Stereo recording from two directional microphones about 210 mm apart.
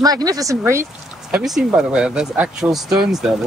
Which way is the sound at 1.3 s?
5° right (ahead or behind).